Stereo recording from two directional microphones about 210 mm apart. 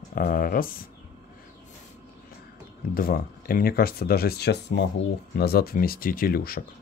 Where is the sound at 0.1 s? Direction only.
45° left (ahead or behind).